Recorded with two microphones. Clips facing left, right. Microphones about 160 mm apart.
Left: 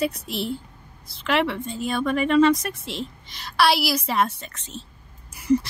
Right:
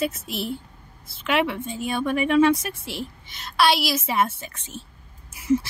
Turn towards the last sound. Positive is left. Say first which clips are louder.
# left 1 dB
turn(degrees=0)  # may be behind; listen again after turning